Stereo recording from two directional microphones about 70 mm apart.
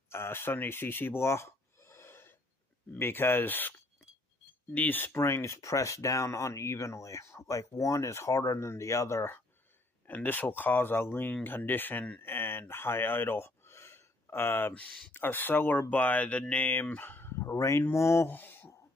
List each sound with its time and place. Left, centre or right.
0.1 s speech: left
4.7 s speech: left
10.0 s speech: left
18.3 s a sound: left